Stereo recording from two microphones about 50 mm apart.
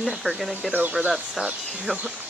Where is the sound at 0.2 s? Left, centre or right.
Left.